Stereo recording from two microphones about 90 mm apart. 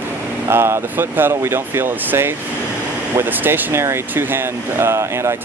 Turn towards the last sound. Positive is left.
turn(degrees=-30)  # may be behind; listen again after turning